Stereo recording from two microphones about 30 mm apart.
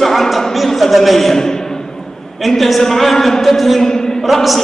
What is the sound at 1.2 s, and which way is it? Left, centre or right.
A man's voice, centre.